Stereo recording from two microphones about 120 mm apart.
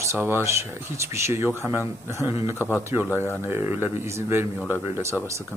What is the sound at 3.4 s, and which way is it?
Speech, 15° right (ahead or behind).